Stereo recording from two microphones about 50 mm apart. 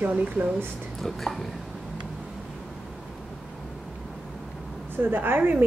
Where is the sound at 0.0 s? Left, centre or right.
Right.